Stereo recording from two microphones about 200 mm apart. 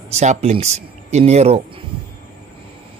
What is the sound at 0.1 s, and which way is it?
A man's voice, 35° right (ahead or behind).